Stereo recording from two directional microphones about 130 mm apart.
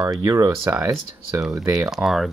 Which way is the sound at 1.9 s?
Centre (ahead or behind).